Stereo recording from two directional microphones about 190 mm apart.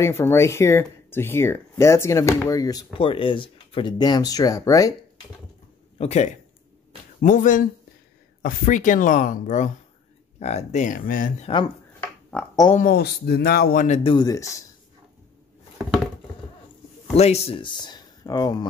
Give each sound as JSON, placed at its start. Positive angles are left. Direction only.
{"t": 0.0, "sound": "speech", "side_deg": 15}
{"t": 5.9, "sound": "speech", "side_deg": 35}
{"t": 12.3, "sound": "speech", "side_deg": 5}
{"t": 12.7, "sound": "speech", "side_deg": 50}
{"t": 13.8, "sound": "speech", "side_deg": 35}
{"t": 14.1, "sound": "speech", "side_deg": 20}
{"t": 17.2, "sound": "speech", "side_deg": 35}